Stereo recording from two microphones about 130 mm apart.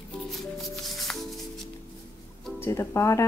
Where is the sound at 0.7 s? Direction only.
Centre (ahead or behind).